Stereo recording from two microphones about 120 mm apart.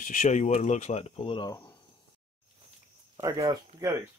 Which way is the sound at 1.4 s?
35° left (ahead or behind).